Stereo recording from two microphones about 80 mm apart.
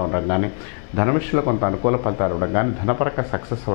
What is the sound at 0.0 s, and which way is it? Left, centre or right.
Speech, left.